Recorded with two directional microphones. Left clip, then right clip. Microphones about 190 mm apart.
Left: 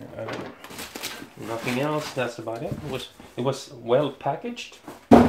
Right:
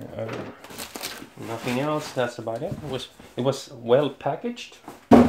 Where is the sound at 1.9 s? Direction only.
35° right (ahead or behind).